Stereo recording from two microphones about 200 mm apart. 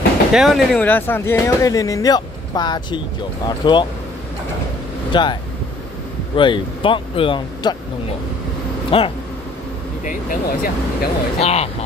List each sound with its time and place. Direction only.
0.3 s speech: centre (ahead or behind); by 3.8 s 25° left (ahead or behind)
5.1 s speech: 20° left (ahead or behind)
8.9 s speech: 30° left (ahead or behind)
10.0 s speech: 45° left (ahead or behind)
11.3 s speech: 30° left (ahead or behind)